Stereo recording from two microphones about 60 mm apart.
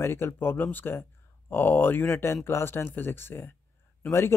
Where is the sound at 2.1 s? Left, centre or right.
Left.